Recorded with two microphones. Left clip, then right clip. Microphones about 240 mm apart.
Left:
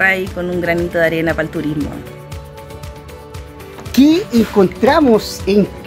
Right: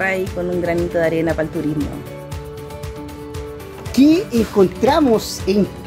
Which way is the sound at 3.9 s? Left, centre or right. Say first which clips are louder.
Left 2 dB; centre.